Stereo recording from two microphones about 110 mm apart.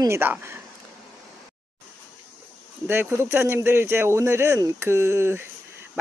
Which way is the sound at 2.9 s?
20° right (ahead or behind).